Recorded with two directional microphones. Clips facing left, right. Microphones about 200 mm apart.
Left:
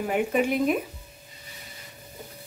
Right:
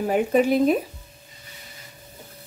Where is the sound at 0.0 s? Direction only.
35° right (ahead or behind).